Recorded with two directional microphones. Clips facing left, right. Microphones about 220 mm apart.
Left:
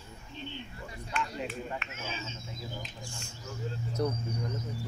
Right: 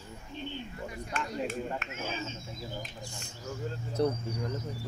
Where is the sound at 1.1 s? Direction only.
45° right (ahead or behind).